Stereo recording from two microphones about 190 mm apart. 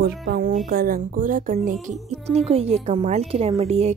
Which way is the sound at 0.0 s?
50° right (ahead or behind).